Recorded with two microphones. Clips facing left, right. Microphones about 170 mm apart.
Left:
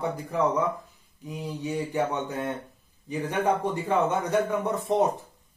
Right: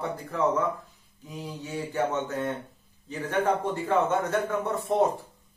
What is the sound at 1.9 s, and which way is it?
Speech, 15° left (ahead or behind).